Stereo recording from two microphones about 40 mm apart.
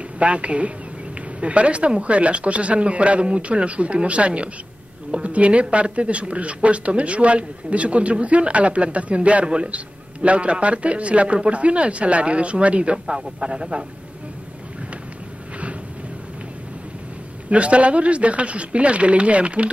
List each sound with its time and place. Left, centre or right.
0.2 s speech: right
12.9 s speech: centre
17.5 s speech: right